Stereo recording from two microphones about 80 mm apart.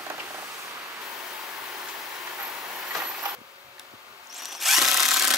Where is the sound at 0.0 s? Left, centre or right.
Right.